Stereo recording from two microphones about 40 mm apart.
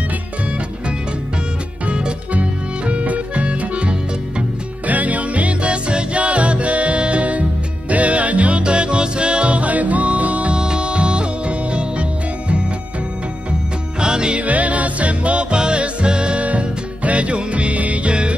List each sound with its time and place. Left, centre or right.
2.9 s music: right
10.5 s music: right
13.9 s music: right
14.4 s music: right